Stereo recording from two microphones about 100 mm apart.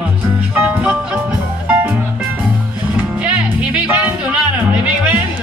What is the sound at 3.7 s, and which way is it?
Music, 15° right (ahead or behind).